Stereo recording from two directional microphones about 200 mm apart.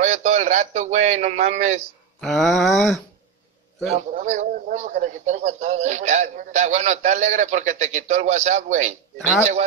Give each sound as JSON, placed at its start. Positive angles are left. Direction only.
{"t": 0.0, "sound": "speech", "side_deg": -35}
{"t": 2.1, "sound": "a sound", "side_deg": 0}
{"t": 3.9, "sound": "a man's voice", "side_deg": -40}